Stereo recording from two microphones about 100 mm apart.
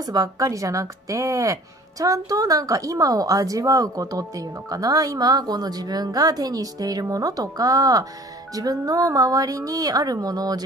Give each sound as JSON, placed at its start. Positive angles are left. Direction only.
{"t": 0.0, "sound": "speech", "side_deg": -40}